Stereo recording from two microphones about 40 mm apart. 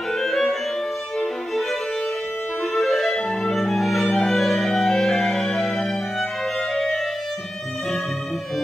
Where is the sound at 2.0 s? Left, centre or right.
Centre.